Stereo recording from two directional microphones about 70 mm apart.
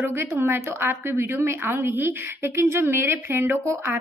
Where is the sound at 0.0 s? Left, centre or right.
Right.